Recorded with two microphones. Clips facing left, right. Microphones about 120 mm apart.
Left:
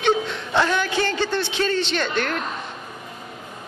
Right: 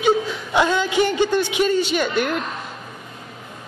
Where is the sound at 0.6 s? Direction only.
15° right (ahead or behind).